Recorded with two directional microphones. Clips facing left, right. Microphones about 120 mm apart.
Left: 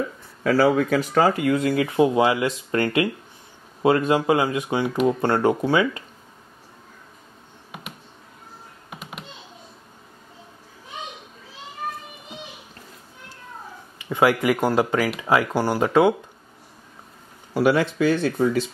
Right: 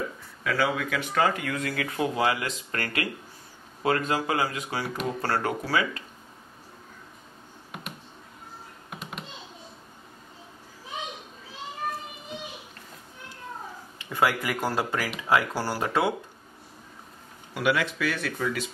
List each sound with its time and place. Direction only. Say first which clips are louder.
0.4 s speech: left 9 dB; 40° left (ahead or behind); by 6.0 s 25° left (ahead or behind)
7.7 s computer keyboard: left 1 dB; centre (ahead or behind)
8.9 s computer keyboard: left 1 dB; centre (ahead or behind)
14.0 s speech: left 7 dB; 20° left (ahead or behind)
17.6 s speech: left 7 dB; 35° left (ahead or behind)